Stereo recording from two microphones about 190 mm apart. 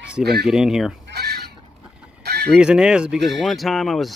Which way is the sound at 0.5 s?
Centre (ahead or behind).